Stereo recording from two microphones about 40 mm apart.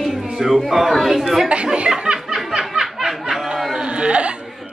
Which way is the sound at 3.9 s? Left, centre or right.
Right.